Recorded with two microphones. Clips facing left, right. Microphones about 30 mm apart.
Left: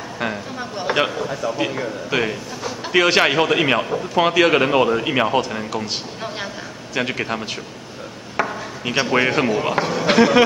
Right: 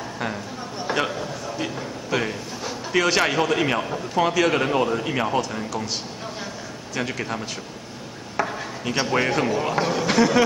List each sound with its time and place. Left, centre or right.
0.7 s a sound: left
1.6 s a man's voice: left
7.0 s a man's voice: left
8.4 s chop: centre
8.9 s a man's voice: left
10.0 s a man's voice: left